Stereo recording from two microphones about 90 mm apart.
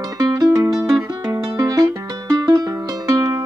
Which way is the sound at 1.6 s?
40° right (ahead or behind).